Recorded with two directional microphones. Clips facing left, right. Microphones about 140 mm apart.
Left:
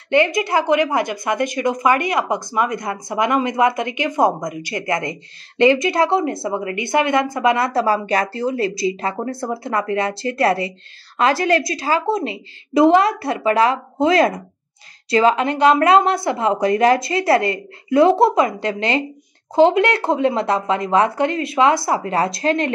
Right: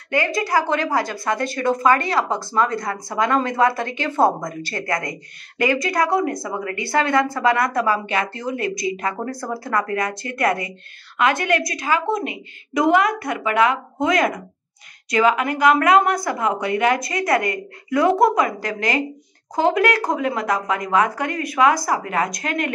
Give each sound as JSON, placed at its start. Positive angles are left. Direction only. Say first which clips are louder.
{"t": 0.1, "sound": "a woman's voice", "louder": "left 4 dB", "side_deg": 20}